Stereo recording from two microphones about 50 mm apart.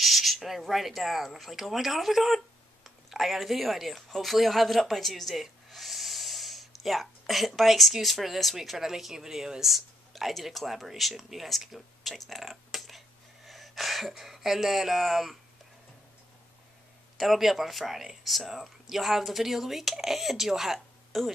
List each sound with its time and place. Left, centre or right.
0.0 s a sound: centre
0.4 s speech: centre
17.2 s speech: centre